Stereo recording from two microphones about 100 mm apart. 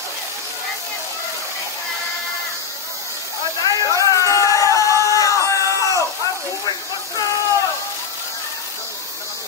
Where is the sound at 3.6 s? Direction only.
35° left (ahead or behind).